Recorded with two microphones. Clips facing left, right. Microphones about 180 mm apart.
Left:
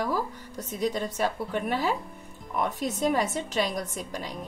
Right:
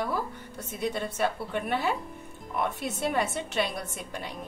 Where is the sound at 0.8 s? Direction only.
40° left (ahead or behind).